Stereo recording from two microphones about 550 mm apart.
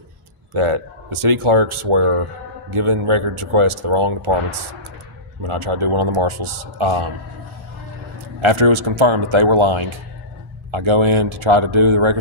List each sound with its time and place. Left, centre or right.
0.5 s speech: right
8.4 s speech: right